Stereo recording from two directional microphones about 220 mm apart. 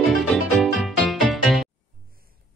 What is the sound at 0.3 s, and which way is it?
Music, centre (ahead or behind).